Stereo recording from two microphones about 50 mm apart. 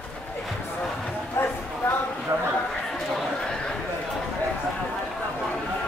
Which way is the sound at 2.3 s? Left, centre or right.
Right.